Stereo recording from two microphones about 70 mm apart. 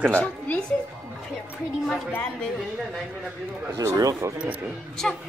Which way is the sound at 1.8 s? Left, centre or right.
Centre.